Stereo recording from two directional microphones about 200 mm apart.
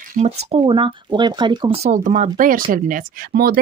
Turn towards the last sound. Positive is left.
turn(degrees=-45)  # may be behind; listen again after turning